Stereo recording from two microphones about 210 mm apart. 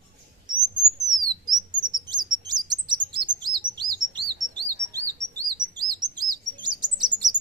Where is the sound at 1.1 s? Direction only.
20° right (ahead or behind).